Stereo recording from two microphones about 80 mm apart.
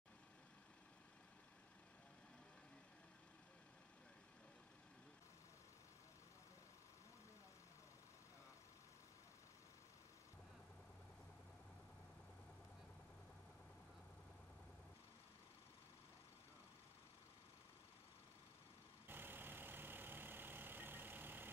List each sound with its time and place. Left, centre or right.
19.0 s vehicle: right